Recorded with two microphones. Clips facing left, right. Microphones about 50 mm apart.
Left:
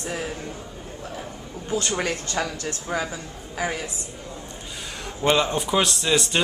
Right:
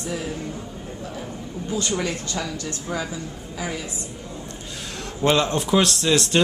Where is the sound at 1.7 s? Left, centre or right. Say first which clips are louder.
Even; left.